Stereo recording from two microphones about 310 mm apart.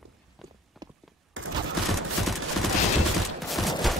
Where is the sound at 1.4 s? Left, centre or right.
Right.